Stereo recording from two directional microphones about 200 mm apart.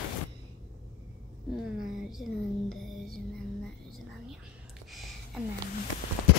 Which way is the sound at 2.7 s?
Centre (ahead or behind).